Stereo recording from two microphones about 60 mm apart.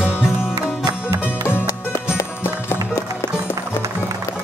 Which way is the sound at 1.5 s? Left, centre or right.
Left.